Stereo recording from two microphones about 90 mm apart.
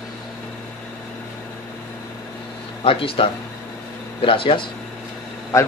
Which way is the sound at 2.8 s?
85° left.